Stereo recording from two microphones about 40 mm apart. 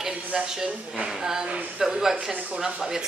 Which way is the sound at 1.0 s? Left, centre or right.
Centre.